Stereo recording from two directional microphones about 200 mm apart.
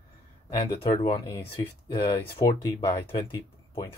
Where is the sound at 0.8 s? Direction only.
30° left (ahead or behind).